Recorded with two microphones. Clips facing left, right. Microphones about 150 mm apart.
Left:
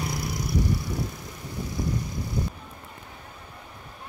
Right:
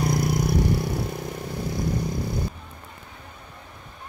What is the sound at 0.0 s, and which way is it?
Vehicle, 45° right (ahead or behind).